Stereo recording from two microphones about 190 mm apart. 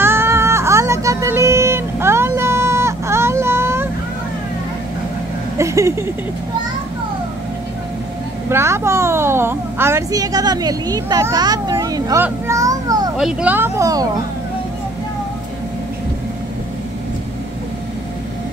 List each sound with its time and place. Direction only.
0.0 s music: 10° right (ahead or behind)
5.6 s a sound: 15° right (ahead or behind)
8.5 s a woman's voice: 15° right (ahead or behind)
13.2 s speech: 5° right (ahead or behind)